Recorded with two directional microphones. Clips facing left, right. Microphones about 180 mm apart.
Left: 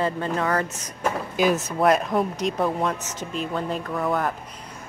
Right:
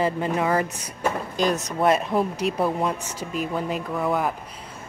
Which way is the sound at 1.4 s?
5° left (ahead or behind).